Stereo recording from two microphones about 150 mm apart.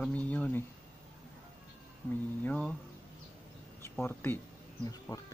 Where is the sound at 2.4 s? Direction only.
10° left (ahead or behind).